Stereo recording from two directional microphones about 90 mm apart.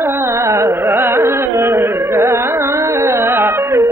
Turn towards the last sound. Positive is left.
turn(degrees=-30)  # may be behind; listen again after turning